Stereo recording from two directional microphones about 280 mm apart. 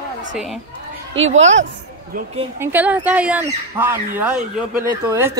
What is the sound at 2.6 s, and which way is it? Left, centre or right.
Speech, centre.